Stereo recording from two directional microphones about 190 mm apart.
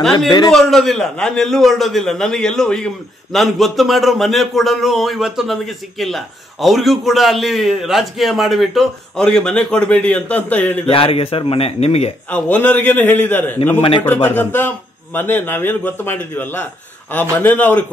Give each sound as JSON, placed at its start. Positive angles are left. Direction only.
{"t": 0.5, "sound": "a man's voice", "side_deg": 0}
{"t": 10.9, "sound": "a man's voice", "side_deg": 30}
{"t": 12.3, "sound": "a man's voice", "side_deg": 5}
{"t": 13.7, "sound": "a man's voice", "side_deg": 30}
{"t": 14.0, "sound": "a man's voice", "side_deg": 10}